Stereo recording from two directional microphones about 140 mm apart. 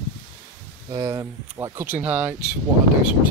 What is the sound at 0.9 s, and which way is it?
Speech, 25° right (ahead or behind).